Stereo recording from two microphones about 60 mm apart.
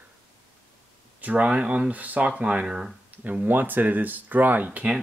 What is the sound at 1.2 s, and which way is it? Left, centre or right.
Speech, right.